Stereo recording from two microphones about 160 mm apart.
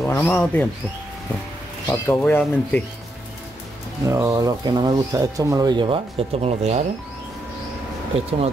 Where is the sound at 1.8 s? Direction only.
10° left (ahead or behind).